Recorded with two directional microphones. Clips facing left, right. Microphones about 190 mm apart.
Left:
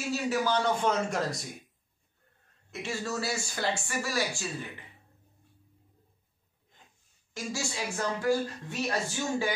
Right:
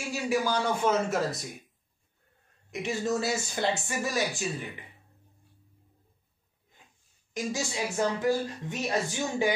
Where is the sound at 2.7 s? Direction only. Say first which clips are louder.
Right 5 dB; 20° right (ahead or behind).